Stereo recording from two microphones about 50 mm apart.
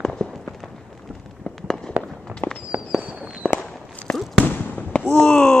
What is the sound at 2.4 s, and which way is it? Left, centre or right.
Fireworks, left.